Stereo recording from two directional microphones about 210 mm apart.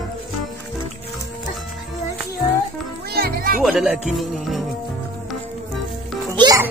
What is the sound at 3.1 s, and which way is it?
Speech, 45° right (ahead or behind).